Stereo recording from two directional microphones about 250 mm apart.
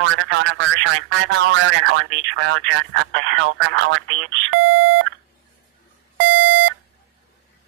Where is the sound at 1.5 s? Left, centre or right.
Right.